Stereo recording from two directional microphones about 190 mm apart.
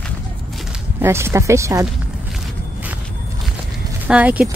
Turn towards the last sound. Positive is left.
turn(degrees=-10)  # may be behind; listen again after turning